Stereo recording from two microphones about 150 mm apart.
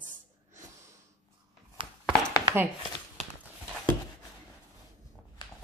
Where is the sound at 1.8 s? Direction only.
35° right (ahead or behind).